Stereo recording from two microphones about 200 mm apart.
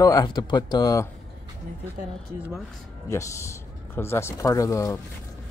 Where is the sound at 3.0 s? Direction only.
15° left (ahead or behind).